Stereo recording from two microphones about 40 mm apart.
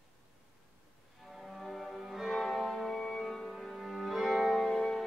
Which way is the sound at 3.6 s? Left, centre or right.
Centre.